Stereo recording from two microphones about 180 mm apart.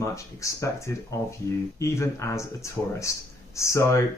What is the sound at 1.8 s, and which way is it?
Speech, 15° left (ahead or behind).